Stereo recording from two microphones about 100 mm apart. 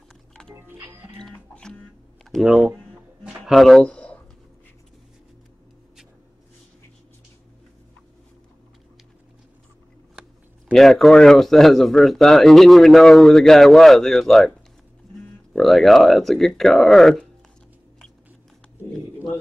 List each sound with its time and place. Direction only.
0.3 s music: 5° left (ahead or behind)
0.7 s music: 25° right (ahead or behind)
1.2 s music: 5° left (ahead or behind)
2.3 s speech: 5° right (ahead or behind)
10.7 s speech: 5° left (ahead or behind)
15.5 s speech: centre (ahead or behind)